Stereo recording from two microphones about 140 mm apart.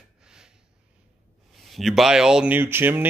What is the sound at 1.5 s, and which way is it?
Speech, centre (ahead or behind).